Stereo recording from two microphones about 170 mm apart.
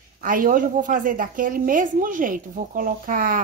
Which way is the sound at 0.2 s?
55° right (ahead or behind).